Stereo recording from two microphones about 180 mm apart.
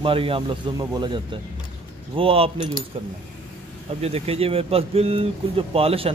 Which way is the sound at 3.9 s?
35° right (ahead or behind).